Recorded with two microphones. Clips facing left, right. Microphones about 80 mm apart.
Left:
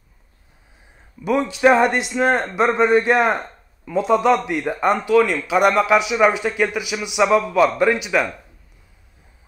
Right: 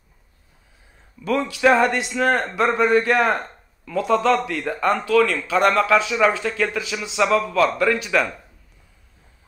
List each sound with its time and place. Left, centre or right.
1.2 s a man's voice: left